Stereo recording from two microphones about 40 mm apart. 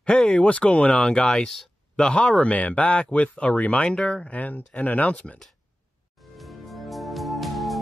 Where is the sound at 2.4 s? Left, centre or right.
Left.